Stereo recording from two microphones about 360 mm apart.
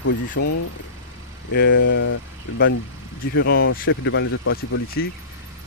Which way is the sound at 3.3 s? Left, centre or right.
Left.